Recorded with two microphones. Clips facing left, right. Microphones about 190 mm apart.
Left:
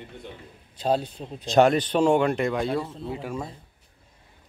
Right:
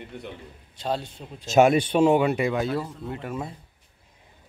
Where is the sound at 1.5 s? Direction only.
10° right (ahead or behind).